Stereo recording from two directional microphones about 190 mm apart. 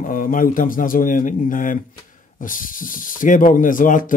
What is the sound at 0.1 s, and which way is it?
Speech, 45° left (ahead or behind).